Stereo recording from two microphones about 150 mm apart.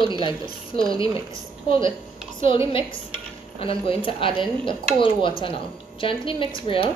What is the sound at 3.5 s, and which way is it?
Speech, 35° left (ahead or behind).